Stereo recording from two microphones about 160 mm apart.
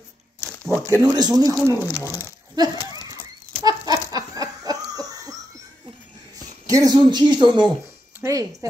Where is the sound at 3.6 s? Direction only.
20° right (ahead or behind).